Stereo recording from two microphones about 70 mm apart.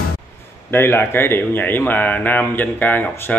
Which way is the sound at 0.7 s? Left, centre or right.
Left.